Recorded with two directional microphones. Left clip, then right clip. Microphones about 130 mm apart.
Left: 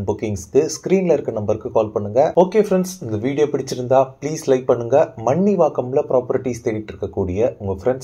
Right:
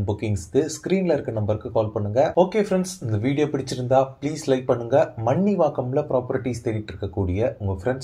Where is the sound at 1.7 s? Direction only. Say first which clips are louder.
Left 5 dB; 25° left (ahead or behind).